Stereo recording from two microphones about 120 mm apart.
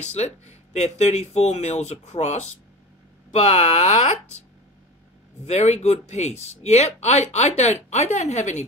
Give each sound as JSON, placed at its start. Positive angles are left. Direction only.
{"t": 0.0, "sound": "speech", "side_deg": 70}
{"t": 5.5, "sound": "speech", "side_deg": 70}